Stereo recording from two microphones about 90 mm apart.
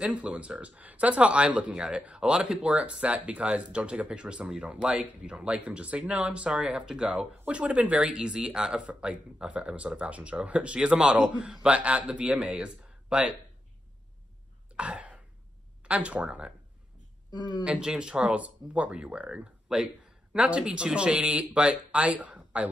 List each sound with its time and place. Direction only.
0.0 s speech: 10° right (ahead or behind)
14.7 s cough: 15° right (ahead or behind)
15.8 s speech: 15° right (ahead or behind)
17.3 s speech: 50° left (ahead or behind)
17.6 s speech: 10° right (ahead or behind)